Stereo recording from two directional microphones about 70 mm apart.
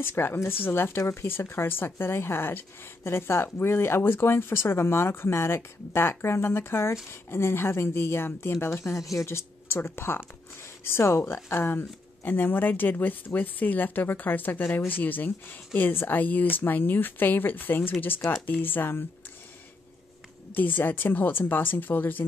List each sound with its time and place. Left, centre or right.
0.0 s speech: left
20.5 s speech: left